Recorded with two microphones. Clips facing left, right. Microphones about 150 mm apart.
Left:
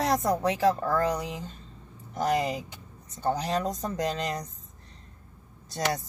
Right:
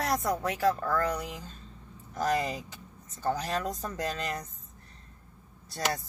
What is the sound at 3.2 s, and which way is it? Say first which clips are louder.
Speech: left 3 dB; 20° left (ahead or behind).